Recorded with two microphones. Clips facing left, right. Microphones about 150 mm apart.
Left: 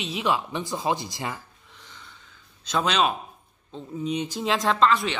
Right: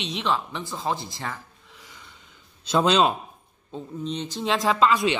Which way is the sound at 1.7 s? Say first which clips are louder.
Even; 5° right (ahead or behind).